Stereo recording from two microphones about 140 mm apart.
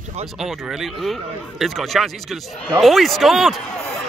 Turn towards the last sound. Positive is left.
turn(degrees=0)  # may be behind; listen again after turning